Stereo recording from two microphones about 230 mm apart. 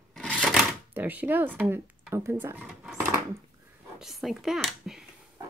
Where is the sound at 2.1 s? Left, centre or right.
Centre.